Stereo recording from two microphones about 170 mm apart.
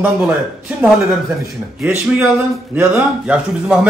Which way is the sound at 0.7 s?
5° right (ahead or behind).